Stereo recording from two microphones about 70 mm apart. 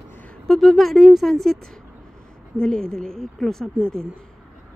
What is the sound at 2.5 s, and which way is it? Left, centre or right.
A woman's voice, centre.